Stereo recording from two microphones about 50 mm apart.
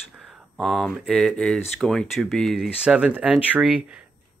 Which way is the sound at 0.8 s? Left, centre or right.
Centre.